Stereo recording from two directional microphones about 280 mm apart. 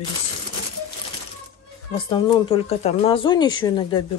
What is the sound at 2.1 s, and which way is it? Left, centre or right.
Speech, centre.